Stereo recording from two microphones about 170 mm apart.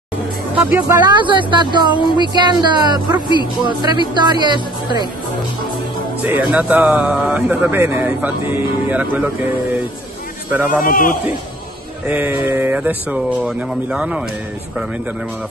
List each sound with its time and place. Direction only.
0.7 s speech: 10° right (ahead or behind)
1.0 s speech: 25° right (ahead or behind)
6.2 s speech: 5° right (ahead or behind)
10.9 s a man's voice: 55° left (ahead or behind)
12.1 s speech: 5° right (ahead or behind)